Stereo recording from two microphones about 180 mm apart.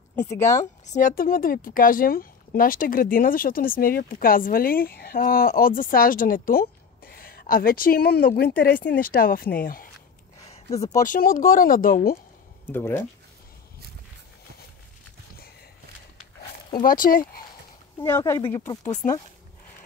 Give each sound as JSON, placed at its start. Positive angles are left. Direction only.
{"t": 0.2, "sound": "a woman's voice", "side_deg": 15}
{"t": 0.8, "sound": "speech", "side_deg": 45}
{"t": 8.7, "sound": "a woman's voice", "side_deg": 10}
{"t": 9.0, "sound": "speech", "side_deg": 55}
{"t": 10.7, "sound": "speech", "side_deg": 20}
{"t": 11.1, "sound": "speech", "side_deg": 50}
{"t": 12.6, "sound": "a woman's voice", "side_deg": 10}
{"t": 16.8, "sound": "speech", "side_deg": 50}
{"t": 18.0, "sound": "a woman's voice", "side_deg": 15}
{"t": 18.9, "sound": "speech", "side_deg": 40}